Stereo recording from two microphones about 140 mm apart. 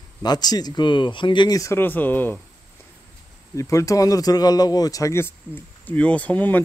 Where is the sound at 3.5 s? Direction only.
25° left (ahead or behind).